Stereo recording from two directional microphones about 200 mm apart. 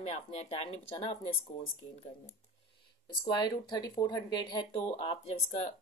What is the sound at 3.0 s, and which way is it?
Speech, 20° left (ahead or behind).